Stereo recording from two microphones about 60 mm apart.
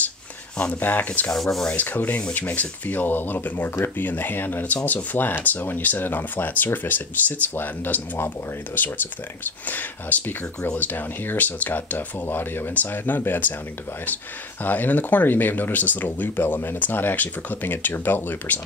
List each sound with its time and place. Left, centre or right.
0.6 s speech: left
1.3 s rub: centre
1.7 s speech: left
14.6 s speech: left